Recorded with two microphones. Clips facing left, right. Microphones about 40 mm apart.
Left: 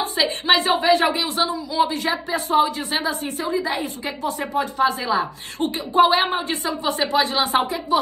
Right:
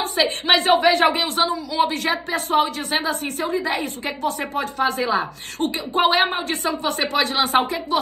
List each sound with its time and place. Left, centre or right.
0.5 s speech: right